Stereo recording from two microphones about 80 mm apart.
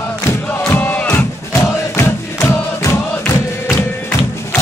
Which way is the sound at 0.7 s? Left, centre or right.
Left.